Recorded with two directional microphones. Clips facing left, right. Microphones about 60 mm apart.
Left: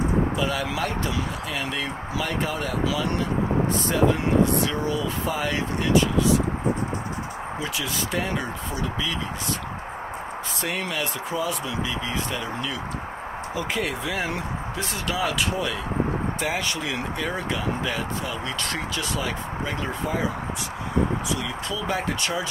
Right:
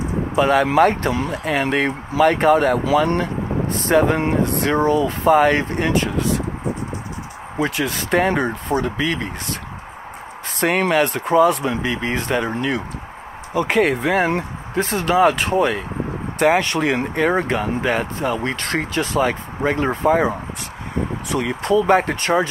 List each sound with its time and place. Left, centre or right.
0.4 s speech: right
7.5 s speech: right
10.6 s speech: right
16.3 s speech: right